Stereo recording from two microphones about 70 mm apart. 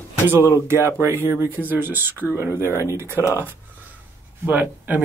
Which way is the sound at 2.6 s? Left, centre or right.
Right.